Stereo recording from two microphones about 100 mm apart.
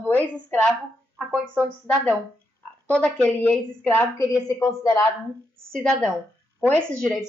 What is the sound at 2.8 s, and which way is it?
A woman's voice, 10° left (ahead or behind).